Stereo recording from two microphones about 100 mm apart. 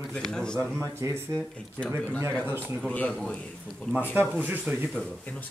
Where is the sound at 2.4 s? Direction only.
20° right (ahead or behind).